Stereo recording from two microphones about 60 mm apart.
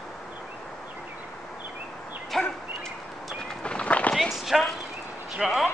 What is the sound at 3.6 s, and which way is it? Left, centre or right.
Run, centre.